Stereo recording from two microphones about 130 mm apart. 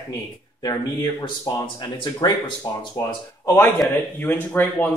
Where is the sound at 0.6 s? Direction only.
30° left (ahead or behind).